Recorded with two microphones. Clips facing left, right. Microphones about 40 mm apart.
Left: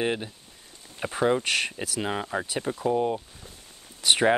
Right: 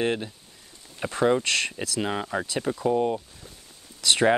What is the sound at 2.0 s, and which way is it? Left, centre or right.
Speech, centre.